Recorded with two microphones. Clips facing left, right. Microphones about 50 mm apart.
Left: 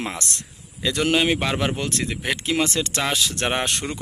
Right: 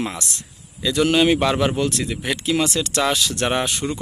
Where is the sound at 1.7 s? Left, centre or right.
Left.